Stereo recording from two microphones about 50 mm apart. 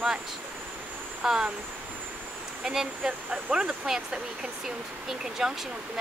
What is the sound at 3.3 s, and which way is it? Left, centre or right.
Speech, right.